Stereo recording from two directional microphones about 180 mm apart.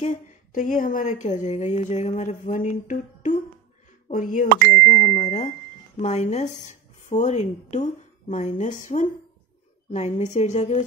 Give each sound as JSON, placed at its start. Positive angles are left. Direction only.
{"t": 0.0, "sound": "a woman's voice", "side_deg": 45}
{"t": 5.1, "sound": "a woman's voice", "side_deg": 35}